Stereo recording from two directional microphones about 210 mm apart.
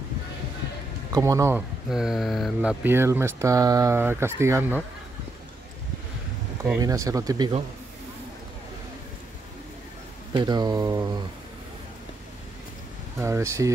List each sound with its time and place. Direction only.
1.1 s speech: 15° right (ahead or behind)
1.9 s speech: centre (ahead or behind)
6.6 s speech: 15° right (ahead or behind)
10.3 s speech: 20° right (ahead or behind)
13.2 s speech: 15° right (ahead or behind)